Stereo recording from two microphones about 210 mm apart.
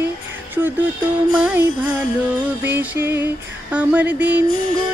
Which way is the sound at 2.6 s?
10° right (ahead or behind).